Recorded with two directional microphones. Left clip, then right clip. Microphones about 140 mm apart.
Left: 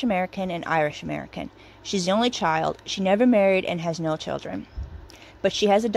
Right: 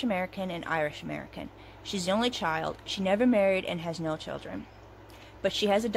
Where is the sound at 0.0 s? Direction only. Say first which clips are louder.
Left 6 dB; 40° left (ahead or behind).